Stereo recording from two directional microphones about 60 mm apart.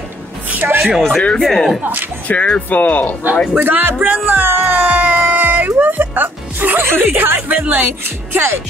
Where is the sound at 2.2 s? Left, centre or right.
Left.